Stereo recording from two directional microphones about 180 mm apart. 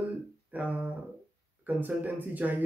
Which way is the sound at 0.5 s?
10° right (ahead or behind).